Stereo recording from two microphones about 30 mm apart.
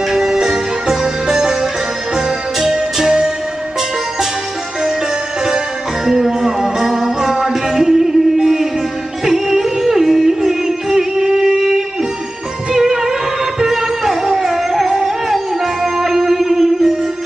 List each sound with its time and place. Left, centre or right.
0.1 s music: centre
6.0 s music: centre
11.1 s a sound: right
12.7 s music: centre